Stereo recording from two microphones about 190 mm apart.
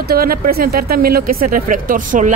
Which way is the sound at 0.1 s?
50° right (ahead or behind).